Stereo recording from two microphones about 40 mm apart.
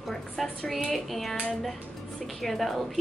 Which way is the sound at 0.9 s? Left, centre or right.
Centre.